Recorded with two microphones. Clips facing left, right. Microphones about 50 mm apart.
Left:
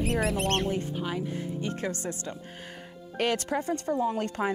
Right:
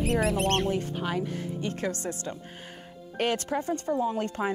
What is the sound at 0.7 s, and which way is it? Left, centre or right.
Speech, right.